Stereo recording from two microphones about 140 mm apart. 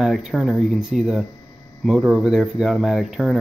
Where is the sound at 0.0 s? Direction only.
Centre (ahead or behind).